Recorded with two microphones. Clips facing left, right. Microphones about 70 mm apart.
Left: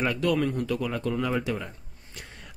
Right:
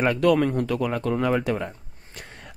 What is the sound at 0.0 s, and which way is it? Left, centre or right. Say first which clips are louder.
Speech: right 5 dB; right.